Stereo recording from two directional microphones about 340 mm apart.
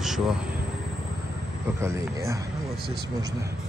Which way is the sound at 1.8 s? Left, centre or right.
Centre.